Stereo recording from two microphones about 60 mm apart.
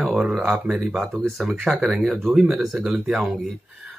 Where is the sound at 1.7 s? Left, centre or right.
Centre.